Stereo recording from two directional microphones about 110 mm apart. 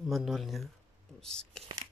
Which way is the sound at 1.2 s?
5° left (ahead or behind).